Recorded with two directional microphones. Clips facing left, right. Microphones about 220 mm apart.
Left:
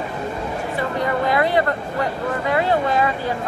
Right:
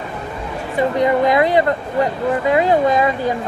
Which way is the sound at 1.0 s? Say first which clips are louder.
Right 4 dB; 20° right (ahead or behind).